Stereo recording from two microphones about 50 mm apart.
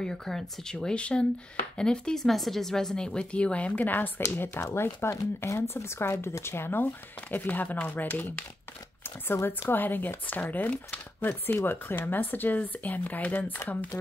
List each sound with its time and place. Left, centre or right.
0.0 s speech: centre
0.9 s speech: left
2.2 s speech: centre; by 4.1 s left
4.6 s speech: left
5.6 s speech: left
9.5 s speech: left
11.5 s speech: left
12.2 s speech: left